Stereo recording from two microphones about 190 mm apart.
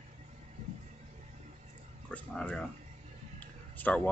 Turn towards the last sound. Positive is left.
turn(degrees=10)  # may be behind; listen again after turning